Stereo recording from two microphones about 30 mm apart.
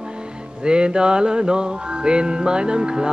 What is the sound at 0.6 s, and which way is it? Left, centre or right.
Music, right.